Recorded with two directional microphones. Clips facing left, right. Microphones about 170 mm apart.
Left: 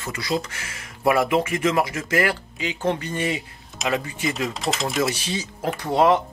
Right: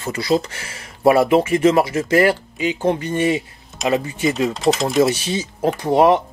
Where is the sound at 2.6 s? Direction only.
20° right (ahead or behind).